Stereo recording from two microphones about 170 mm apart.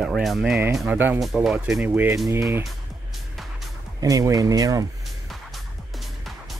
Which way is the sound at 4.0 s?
20° right (ahead or behind).